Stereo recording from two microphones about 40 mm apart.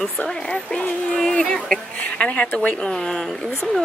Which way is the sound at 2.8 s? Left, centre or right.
Centre.